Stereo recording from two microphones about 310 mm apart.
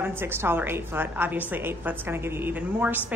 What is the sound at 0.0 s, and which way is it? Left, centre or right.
A woman's voice, centre.